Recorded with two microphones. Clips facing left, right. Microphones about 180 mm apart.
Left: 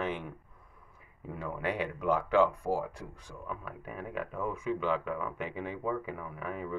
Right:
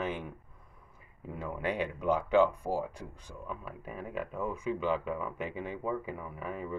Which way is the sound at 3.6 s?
30° right (ahead or behind).